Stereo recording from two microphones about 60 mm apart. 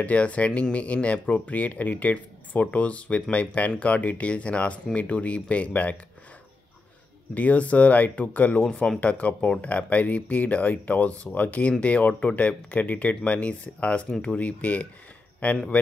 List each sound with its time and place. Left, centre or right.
0.0 s speech: left
7.3 s speech: left
8.6 s speech: centre